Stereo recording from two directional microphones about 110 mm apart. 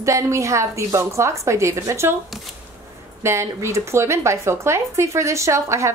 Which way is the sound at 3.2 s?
25° right (ahead or behind).